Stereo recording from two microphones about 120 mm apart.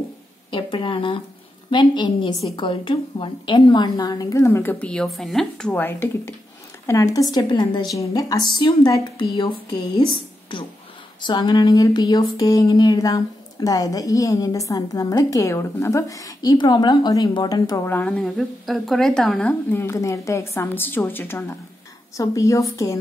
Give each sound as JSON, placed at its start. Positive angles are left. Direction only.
{"t": 0.5, "sound": "a woman's voice", "side_deg": 40}
{"t": 6.9, "sound": "a woman's voice", "side_deg": 25}
{"t": 10.5, "sound": "a woman's voice", "side_deg": 40}
{"t": 17.8, "sound": "speech", "side_deg": 15}
{"t": 19.4, "sound": "a woman's voice", "side_deg": 20}